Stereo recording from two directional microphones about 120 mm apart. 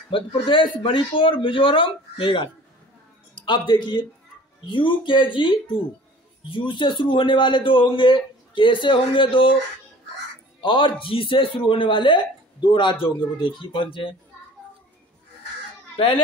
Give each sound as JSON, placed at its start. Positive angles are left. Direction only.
{"t": 0.1, "sound": "a man's voice", "side_deg": 45}
{"t": 10.6, "sound": "speech", "side_deg": 45}